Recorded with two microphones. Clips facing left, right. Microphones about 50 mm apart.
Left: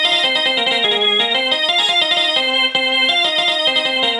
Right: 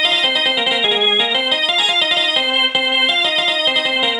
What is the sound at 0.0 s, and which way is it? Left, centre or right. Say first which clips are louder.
Music: even; centre.